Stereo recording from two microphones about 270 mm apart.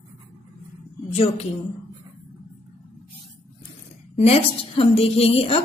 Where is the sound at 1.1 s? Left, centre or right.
Left.